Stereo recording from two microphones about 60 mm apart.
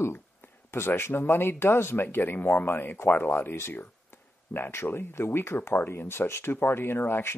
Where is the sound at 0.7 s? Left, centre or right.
Left.